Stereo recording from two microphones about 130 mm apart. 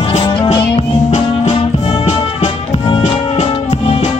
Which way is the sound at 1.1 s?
60° left (ahead or behind).